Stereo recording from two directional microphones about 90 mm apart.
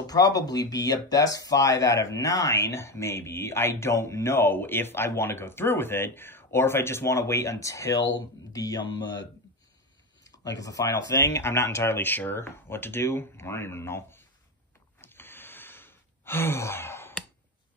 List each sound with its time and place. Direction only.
0.0 s speech: 45° left (ahead or behind)
10.2 s speech: 40° left (ahead or behind)
15.0 s sigh: 25° left (ahead or behind)